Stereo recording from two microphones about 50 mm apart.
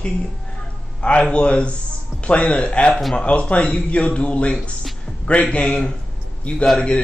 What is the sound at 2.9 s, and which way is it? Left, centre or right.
Speech, centre.